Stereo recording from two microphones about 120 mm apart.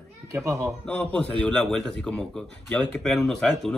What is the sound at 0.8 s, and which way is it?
A man's voice, 10° left (ahead or behind).